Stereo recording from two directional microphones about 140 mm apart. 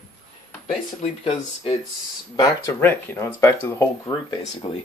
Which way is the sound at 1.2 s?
40° left (ahead or behind).